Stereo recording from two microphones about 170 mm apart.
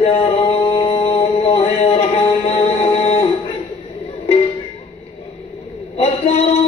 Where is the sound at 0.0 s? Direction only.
35° left (ahead or behind).